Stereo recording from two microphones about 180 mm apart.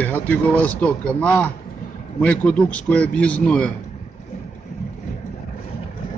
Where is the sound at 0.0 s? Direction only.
10° left (ahead or behind).